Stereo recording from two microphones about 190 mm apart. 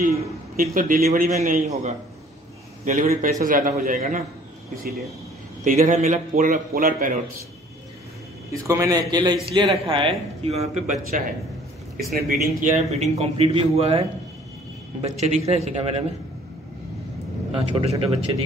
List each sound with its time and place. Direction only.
0.6 s a man's voice: 45° right (ahead or behind)
5.6 s a man's voice: 40° right (ahead or behind)
6.3 s a man's voice: 50° right (ahead or behind)
8.5 s a man's voice: 15° right (ahead or behind); by 11.2 s 40° right (ahead or behind)
12.1 s a man's voice: 55° right (ahead or behind); by 16.0 s 35° right (ahead or behind)
17.5 s a man's voice: 30° right (ahead or behind)